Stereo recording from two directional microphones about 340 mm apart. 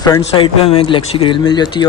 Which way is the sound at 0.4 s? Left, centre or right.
Centre.